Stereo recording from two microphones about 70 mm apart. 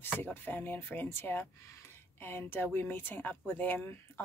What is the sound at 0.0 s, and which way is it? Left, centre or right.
A woman's voice, left.